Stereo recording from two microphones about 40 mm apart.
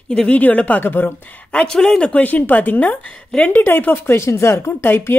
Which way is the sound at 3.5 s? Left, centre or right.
Left.